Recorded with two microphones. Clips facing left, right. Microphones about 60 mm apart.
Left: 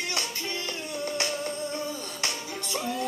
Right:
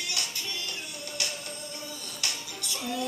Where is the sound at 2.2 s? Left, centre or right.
Left.